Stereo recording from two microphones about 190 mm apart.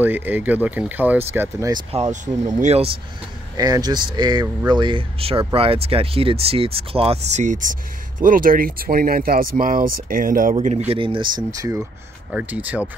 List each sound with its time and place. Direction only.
0.0 s speech: 10° right (ahead or behind)
1.7 s speech: 30° right (ahead or behind)
3.5 s speech: 20° right (ahead or behind); by 10.5 s 45° right (ahead or behind)
10.5 s speech: 35° right (ahead or behind)
12.3 s speech: 5° right (ahead or behind)